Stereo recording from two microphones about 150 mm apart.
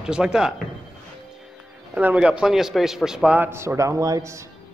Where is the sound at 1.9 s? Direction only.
10° right (ahead or behind).